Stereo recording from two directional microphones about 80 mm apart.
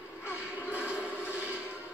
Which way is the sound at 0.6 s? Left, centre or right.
Centre.